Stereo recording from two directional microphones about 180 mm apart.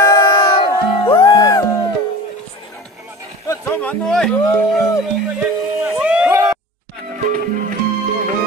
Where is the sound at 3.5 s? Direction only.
10° left (ahead or behind).